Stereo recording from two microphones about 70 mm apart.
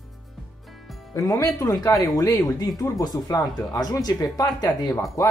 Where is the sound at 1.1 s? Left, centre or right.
Left.